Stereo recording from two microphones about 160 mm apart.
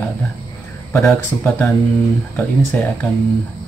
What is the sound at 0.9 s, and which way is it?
Speech, 15° left (ahead or behind).